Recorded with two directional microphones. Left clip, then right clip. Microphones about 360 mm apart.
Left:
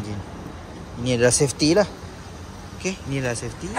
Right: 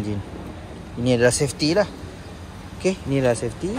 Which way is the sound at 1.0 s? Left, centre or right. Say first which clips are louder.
Right 1 dB; centre.